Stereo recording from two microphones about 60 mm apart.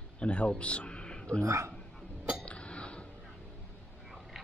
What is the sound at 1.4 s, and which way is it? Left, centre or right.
Speech, right.